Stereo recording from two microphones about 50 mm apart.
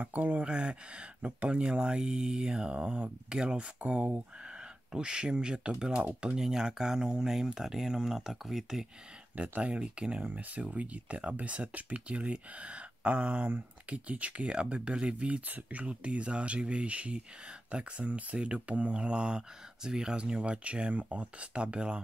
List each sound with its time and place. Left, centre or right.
0.0 s speech: right
0.5 s speech: right
9.6 s speech: right